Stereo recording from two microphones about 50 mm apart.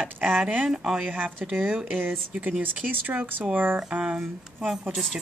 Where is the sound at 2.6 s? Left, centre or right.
Right.